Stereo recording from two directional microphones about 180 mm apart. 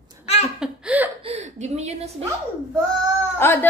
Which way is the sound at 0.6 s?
5° right (ahead or behind).